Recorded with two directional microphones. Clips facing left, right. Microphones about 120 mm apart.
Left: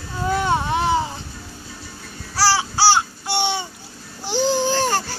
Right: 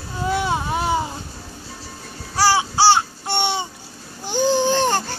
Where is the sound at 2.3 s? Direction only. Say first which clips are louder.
Right 2 dB; 15° right (ahead or behind).